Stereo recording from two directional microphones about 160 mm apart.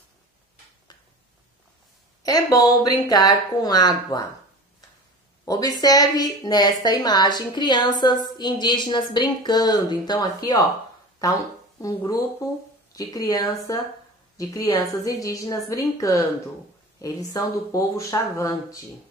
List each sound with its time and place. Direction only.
2.2 s a woman's voice: 25° left (ahead or behind)
5.4 s a woman's voice: 25° left (ahead or behind)
11.8 s a woman's voice: 20° left (ahead or behind)